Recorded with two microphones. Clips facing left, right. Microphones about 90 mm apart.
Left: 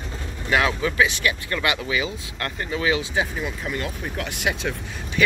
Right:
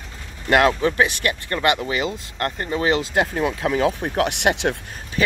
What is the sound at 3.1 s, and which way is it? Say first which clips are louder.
Speech: right 5 dB; 65° right (ahead or behind).